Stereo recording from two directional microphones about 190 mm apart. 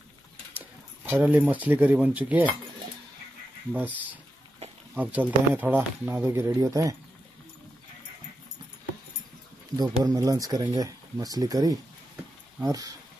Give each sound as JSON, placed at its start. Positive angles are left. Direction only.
{"t": 1.1, "sound": "speech", "side_deg": -10}
{"t": 3.7, "sound": "speech", "side_deg": -10}
{"t": 9.8, "sound": "speech", "side_deg": -20}